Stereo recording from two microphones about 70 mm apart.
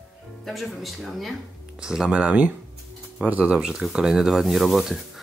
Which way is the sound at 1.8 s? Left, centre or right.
Centre.